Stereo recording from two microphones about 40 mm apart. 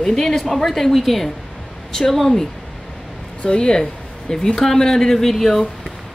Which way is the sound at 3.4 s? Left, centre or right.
Left.